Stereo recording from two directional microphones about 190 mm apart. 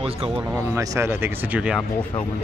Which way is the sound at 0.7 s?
15° right (ahead or behind).